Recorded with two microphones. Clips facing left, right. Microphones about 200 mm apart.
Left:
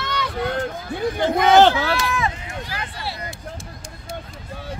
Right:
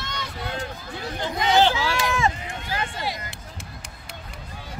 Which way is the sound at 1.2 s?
55° left (ahead or behind).